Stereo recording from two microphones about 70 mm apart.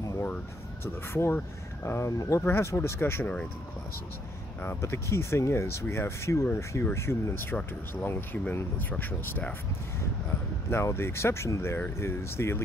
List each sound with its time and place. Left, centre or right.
0.8 s speech: left
4.6 s speech: left
10.7 s speech: left